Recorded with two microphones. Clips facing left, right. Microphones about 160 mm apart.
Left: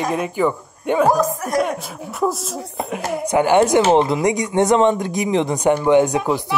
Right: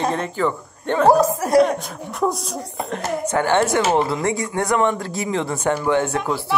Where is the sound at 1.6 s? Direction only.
5° left (ahead or behind).